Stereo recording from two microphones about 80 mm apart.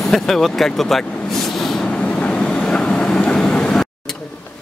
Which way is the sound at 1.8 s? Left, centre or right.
Centre.